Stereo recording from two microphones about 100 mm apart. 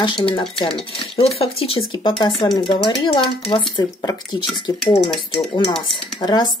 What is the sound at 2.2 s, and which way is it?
Speech, 50° left (ahead or behind).